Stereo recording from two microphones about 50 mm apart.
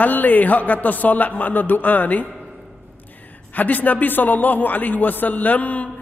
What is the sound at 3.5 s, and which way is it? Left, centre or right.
A man's voice, left.